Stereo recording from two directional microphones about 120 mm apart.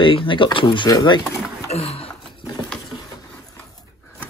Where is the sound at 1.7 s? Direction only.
55° left (ahead or behind).